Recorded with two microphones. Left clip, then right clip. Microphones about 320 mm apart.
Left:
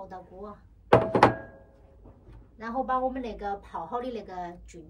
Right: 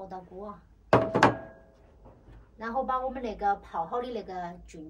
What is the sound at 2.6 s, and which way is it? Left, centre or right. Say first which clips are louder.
A woman's voice: left 2 dB; centre.